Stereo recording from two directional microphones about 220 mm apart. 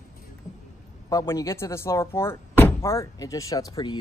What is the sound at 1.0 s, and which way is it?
Speech, 15° left (ahead or behind).